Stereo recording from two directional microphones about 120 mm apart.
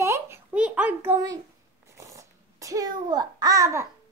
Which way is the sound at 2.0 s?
25° right (ahead or behind).